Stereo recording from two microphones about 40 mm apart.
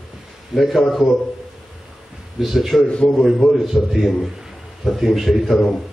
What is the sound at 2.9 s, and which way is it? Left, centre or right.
Speech, left.